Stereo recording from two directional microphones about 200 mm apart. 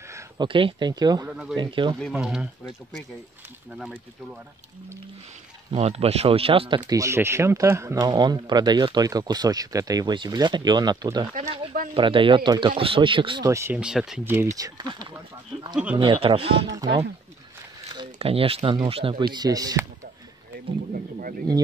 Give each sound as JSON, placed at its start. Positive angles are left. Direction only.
{"t": 0.1, "sound": "speech", "side_deg": -25}
{"t": 2.1, "sound": "speech", "side_deg": -5}
{"t": 3.7, "sound": "speech", "side_deg": -5}
{"t": 5.7, "sound": "speech", "side_deg": -30}
{"t": 15.7, "sound": "speech", "side_deg": -5}
{"t": 16.0, "sound": "speech", "side_deg": -25}
{"t": 20.9, "sound": "speech", "side_deg": -45}